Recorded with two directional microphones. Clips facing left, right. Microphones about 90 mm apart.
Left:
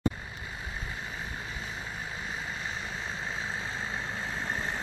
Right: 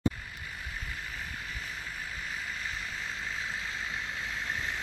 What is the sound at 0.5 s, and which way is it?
Vehicle, 30° left (ahead or behind).